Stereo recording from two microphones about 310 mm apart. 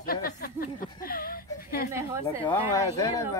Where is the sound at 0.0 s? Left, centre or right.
Left.